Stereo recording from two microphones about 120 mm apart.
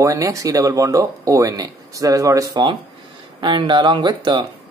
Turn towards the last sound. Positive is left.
turn(degrees=-40)  # may be behind; listen again after turning